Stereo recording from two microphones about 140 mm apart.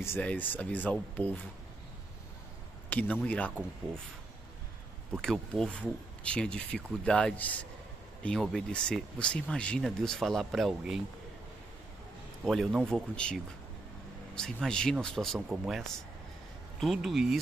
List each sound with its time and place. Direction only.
0.0 s speech: 10° left (ahead or behind)
2.9 s speech: 10° left (ahead or behind)
5.1 s speech: 5° left (ahead or behind)
12.4 s speech: centre (ahead or behind)